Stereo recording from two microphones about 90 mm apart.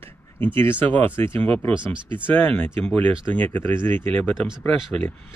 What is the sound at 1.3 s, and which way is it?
Speech, 90° right.